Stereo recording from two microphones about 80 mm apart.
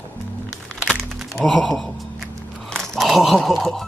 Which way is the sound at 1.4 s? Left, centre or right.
Centre.